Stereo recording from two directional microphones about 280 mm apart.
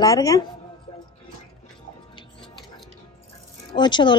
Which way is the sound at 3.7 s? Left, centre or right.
Centre.